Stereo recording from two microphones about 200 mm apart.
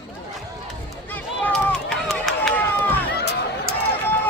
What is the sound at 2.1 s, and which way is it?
Run, 5° left (ahead or behind).